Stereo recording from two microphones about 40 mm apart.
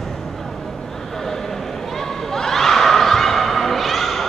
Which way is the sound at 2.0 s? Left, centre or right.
Centre.